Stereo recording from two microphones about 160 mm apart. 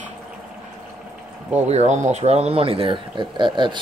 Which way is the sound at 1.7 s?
45° right (ahead or behind).